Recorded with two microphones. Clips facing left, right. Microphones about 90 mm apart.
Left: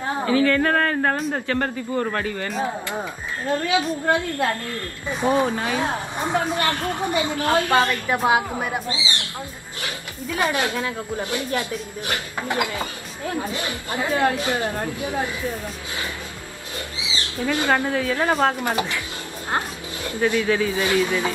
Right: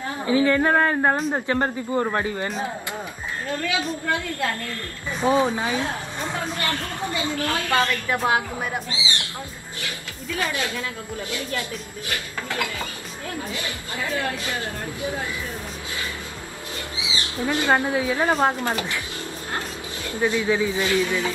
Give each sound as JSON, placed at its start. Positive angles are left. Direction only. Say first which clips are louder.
{"t": 0.3, "sound": "a man's voice", "louder": "right 1 dB", "side_deg": -20}
{"t": 2.9, "sound": "a woman's voice", "louder": "left 3 dB", "side_deg": 20}
{"t": 5.2, "sound": "speech", "louder": "even", "side_deg": -15}
{"t": 5.8, "sound": "a woman's voice", "louder": "left 3 dB", "side_deg": 20}
{"t": 8.9, "sound": "a man's voice", "louder": "left 1 dB", "side_deg": -20}
{"t": 9.8, "sound": "a woman's voice", "louder": "left 3 dB", "side_deg": 20}
{"t": 17.5, "sound": "speech", "louder": "even", "side_deg": -20}
{"t": 18.6, "sound": "a man's voice", "louder": "left 2 dB", "side_deg": 15}
{"t": 20.2, "sound": "a man's voice", "louder": "left 1 dB", "side_deg": -20}
{"t": 20.8, "sound": "a man's voice", "louder": "left 2 dB", "side_deg": 20}